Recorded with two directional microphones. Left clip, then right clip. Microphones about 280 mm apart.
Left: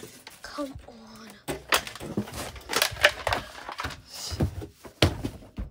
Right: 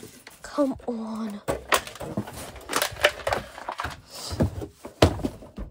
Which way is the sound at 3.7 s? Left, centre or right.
Centre.